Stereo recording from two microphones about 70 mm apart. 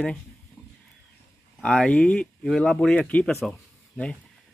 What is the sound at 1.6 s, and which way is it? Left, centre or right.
Speech, centre.